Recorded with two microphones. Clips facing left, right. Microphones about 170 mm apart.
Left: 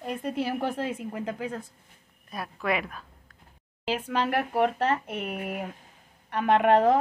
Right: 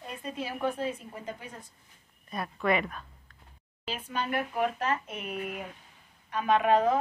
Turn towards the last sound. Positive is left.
turn(degrees=65)  # may be behind; listen again after turning